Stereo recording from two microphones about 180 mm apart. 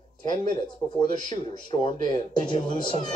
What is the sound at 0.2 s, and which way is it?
Speech, 25° left (ahead or behind).